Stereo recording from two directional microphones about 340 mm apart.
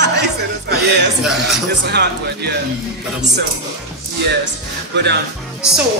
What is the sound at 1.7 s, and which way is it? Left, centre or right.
Speech, right.